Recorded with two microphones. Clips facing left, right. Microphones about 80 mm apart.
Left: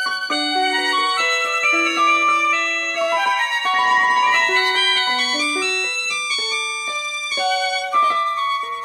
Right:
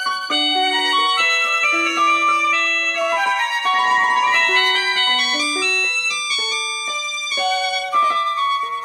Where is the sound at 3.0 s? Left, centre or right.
Right.